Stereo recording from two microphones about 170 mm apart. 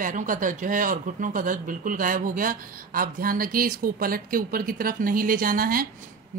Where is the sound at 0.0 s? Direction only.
50° right (ahead or behind).